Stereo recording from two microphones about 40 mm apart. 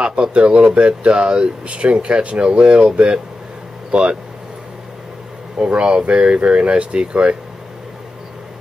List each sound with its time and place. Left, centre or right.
0.0 s speech: right
5.6 s speech: right